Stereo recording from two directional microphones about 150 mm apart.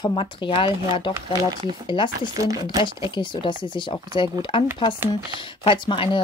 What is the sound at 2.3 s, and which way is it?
Speech, 25° right (ahead or behind).